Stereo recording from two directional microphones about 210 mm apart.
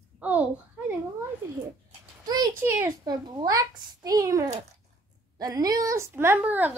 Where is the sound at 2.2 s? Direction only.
20° right (ahead or behind).